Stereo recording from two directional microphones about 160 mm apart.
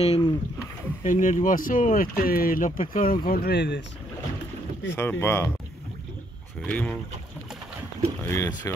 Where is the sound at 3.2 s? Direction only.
70° left (ahead or behind); by 3.8 s 90° left.